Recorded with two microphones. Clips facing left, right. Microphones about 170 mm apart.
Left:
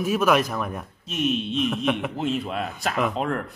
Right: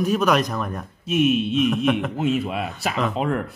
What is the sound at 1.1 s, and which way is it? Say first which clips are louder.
Speech: right 6 dB; 5° right (ahead or behind).